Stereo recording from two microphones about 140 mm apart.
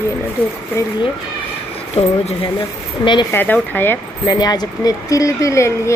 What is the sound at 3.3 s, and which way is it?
Speech, 15° left (ahead or behind).